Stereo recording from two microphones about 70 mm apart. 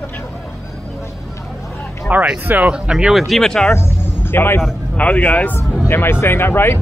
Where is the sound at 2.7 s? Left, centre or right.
Centre.